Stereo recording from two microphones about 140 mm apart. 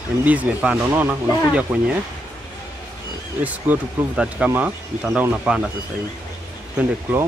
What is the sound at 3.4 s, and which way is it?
Speech, 10° right (ahead or behind).